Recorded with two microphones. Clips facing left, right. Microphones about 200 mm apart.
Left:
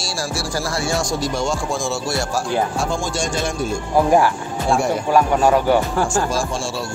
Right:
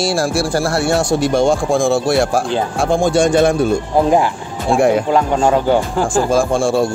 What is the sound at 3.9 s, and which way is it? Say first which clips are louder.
Speech: left 2 dB; 20° right (ahead or behind).